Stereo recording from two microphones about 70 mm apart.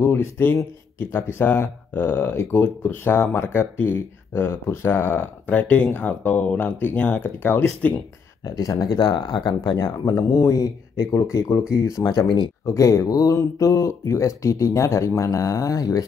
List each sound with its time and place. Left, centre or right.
0.0 s speech: left
8.5 s speech: left
9.7 s speech: left
12.1 s speech: left
12.6 s speech: left